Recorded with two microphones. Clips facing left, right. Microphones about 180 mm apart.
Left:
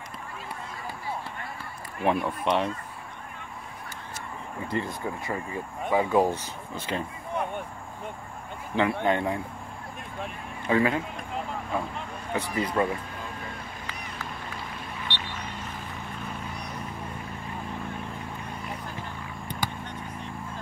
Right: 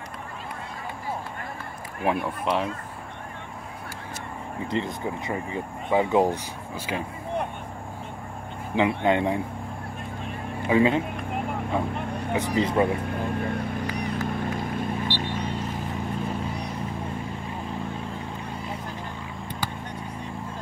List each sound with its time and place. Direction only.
2.0 s speech: centre (ahead or behind)
4.6 s speech: 20° right (ahead or behind)
9.0 s speech: 20° right (ahead or behind)
10.7 s speech: 20° right (ahead or behind)
13.0 s vehicle: 60° right (ahead or behind)
13.8 s vehicle: 45° right (ahead or behind)